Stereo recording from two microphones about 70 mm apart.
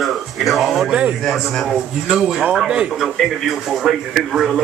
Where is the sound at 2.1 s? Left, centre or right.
Centre.